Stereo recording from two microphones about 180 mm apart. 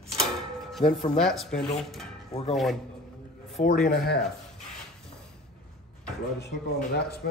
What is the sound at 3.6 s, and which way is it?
Speech, 35° left (ahead or behind).